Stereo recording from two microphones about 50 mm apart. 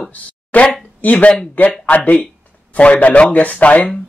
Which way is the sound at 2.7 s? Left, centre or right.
Left.